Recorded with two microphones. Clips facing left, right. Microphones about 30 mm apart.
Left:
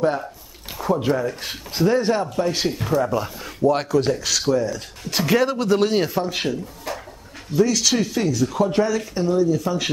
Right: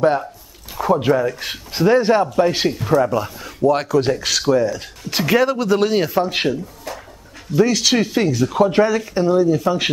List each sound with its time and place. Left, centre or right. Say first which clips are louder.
0.7 s speech: right 5 dB; right
3.1 s speech: right 3 dB; centre
4.0 s speech: right 2 dB; right
5.3 s speech: right 3 dB; centre
6.2 s speech: right 4 dB; right
7.5 s speech: right 3 dB; right